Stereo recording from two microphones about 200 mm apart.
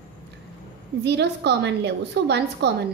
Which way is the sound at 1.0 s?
55° right (ahead or behind).